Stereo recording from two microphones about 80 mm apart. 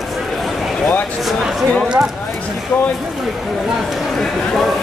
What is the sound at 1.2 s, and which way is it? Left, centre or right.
Speech, centre.